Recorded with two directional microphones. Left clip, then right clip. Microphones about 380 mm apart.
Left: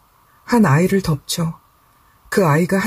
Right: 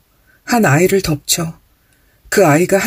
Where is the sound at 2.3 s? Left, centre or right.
Centre.